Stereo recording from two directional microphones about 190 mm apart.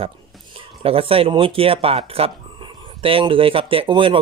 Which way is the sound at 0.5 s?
30° right (ahead or behind).